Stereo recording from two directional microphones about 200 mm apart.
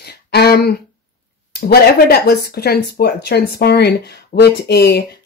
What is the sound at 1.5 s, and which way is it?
Speech, 50° left (ahead or behind).